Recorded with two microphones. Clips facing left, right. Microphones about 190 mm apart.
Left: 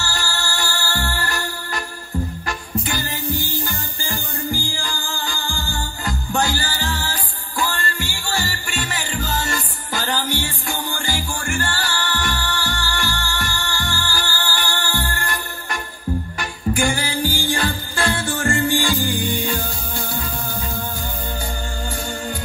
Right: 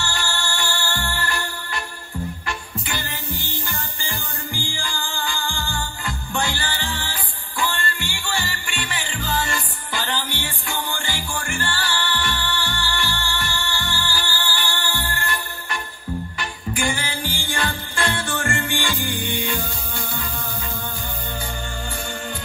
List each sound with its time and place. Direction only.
0.0 s music: 40° left (ahead or behind)